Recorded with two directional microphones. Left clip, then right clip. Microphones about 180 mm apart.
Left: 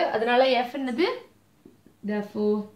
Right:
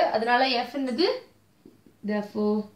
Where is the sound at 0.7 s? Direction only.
30° left (ahead or behind).